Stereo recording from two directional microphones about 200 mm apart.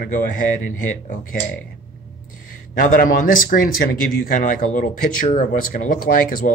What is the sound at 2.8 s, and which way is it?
Speech, 40° left (ahead or behind).